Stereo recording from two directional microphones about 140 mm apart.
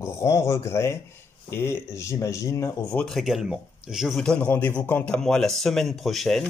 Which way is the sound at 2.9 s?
5° left (ahead or behind).